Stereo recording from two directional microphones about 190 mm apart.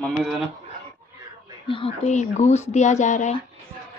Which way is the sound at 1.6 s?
30° left (ahead or behind).